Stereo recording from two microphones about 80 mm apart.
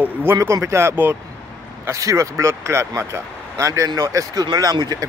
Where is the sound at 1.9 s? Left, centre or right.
Right.